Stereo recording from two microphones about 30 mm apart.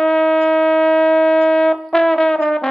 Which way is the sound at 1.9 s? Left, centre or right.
Left.